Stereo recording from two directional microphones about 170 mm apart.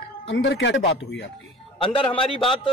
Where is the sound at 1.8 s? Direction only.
30° left (ahead or behind).